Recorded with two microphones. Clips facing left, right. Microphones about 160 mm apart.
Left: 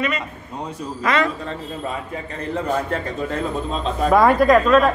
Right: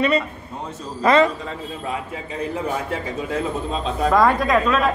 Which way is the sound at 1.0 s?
30° right (ahead or behind).